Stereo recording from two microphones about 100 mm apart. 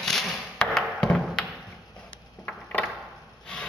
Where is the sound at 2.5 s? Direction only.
15° left (ahead or behind).